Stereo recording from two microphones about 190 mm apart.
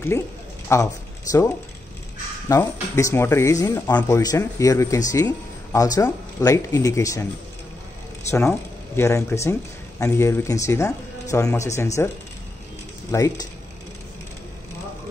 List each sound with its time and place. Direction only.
0.7 s speech: 15° left (ahead or behind)
1.3 s speech: 40° left (ahead or behind)
2.4 s speech: 15° left (ahead or behind)
8.3 s speech: 15° left (ahead or behind)
13.1 s speech: 20° left (ahead or behind)